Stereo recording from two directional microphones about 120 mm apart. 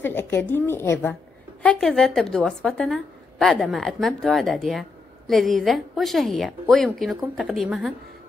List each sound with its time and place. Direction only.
0.0 s a woman's voice: 20° left (ahead or behind)
1.6 s a woman's voice: 5° left (ahead or behind)